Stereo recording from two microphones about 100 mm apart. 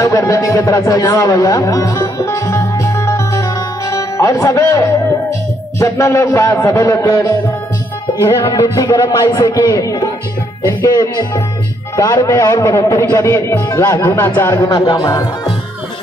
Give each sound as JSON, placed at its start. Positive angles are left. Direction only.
{"t": 0.0, "sound": "a man's voice", "side_deg": 30}
{"t": 14.6, "sound": "a man's voice", "side_deg": 40}